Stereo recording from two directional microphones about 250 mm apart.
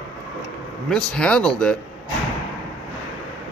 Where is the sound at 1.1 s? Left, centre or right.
Centre.